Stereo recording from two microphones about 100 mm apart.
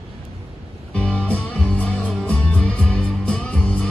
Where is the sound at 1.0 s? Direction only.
15° left (ahead or behind).